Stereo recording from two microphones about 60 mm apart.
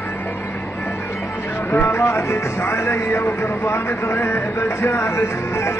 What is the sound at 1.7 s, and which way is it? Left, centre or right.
Music, left.